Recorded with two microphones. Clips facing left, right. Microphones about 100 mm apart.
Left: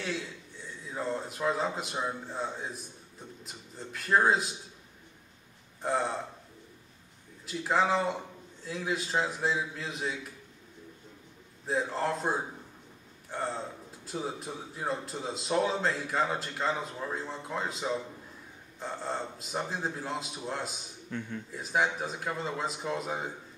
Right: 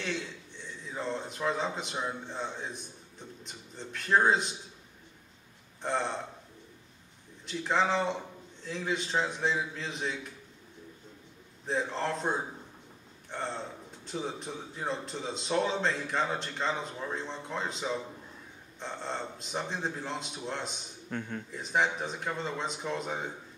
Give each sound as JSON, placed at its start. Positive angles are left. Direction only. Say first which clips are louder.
{"t": 0.0, "sound": "a man's voice", "louder": "even", "side_deg": 5}
{"t": 5.8, "sound": "a man's voice", "louder": "left 2 dB", "side_deg": 5}
{"t": 7.4, "sound": "a man's voice", "louder": "left 1 dB", "side_deg": 5}
{"t": 11.6, "sound": "a man's voice", "louder": "left 1 dB", "side_deg": 5}
{"t": 21.1, "sound": "speech", "louder": "right 1 dB", "side_deg": -55}
{"t": 21.5, "sound": "a man's voice", "louder": "even", "side_deg": 5}